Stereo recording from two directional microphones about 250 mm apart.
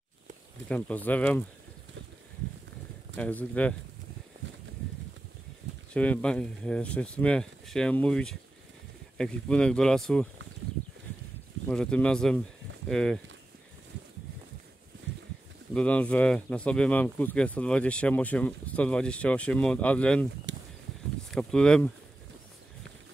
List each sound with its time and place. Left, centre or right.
0.7 s speech: centre
3.2 s speech: centre
5.9 s speech: centre
11.7 s speech: centre
15.7 s speech: centre
20.5 s a sound: right
21.3 s speech: centre